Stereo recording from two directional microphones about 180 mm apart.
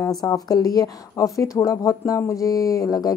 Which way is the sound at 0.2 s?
20° left (ahead or behind).